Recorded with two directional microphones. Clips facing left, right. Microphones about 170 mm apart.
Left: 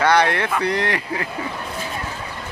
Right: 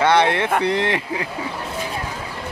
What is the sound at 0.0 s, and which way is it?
Speech, 25° right (ahead or behind).